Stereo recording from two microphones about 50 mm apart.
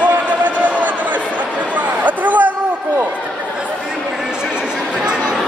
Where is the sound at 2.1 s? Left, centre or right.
Right.